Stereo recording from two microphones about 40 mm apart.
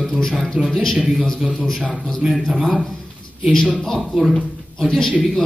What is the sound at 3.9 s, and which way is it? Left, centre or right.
Speech, centre.